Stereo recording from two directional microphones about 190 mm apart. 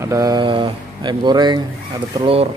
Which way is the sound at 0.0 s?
20° right (ahead or behind).